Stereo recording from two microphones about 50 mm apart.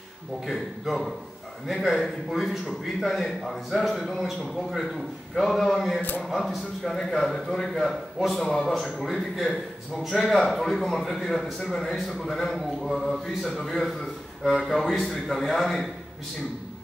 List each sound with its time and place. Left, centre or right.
0.5 s a man's voice: centre